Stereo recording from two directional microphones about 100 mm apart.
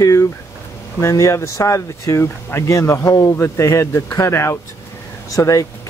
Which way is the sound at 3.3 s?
25° left (ahead or behind).